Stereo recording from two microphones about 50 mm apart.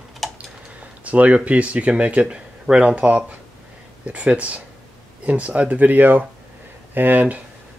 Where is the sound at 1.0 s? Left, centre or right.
Right.